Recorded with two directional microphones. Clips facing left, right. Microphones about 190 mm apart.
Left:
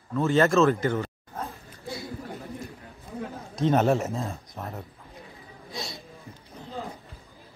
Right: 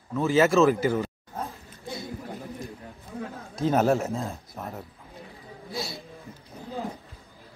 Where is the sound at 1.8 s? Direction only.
20° right (ahead or behind).